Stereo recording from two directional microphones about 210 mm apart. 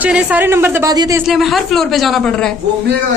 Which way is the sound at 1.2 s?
Centre (ahead or behind).